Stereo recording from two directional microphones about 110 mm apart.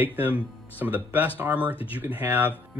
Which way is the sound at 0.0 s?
15° right (ahead or behind).